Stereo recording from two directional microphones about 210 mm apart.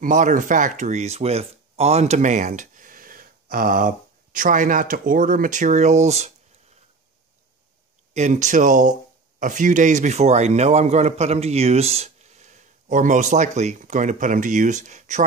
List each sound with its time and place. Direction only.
0.0 s speech: 35° right (ahead or behind)
8.1 s a man's voice: 35° right (ahead or behind)